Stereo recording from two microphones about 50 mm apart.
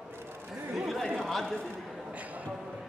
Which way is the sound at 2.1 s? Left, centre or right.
Right.